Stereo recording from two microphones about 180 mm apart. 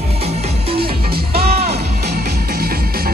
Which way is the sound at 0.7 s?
60° right (ahead or behind).